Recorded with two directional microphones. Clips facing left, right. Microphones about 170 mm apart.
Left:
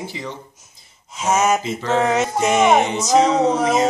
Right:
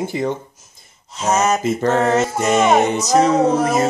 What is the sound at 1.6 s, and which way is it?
Speech, 50° right (ahead or behind).